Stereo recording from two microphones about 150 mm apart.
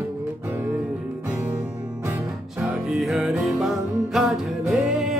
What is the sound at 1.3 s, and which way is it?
Music, 20° right (ahead or behind).